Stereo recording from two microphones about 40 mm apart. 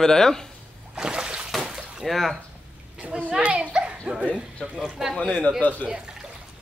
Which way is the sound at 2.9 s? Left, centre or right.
Right.